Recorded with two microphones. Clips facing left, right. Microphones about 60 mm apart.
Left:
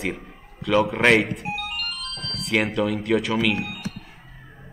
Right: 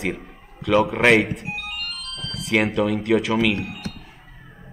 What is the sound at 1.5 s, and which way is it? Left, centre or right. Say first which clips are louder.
Music: left 2 dB; left.